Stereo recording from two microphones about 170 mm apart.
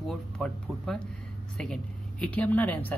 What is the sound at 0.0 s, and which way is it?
Speech, centre (ahead or behind).